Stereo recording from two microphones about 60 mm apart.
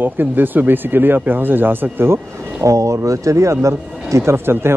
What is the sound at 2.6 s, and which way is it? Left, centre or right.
Speech, right.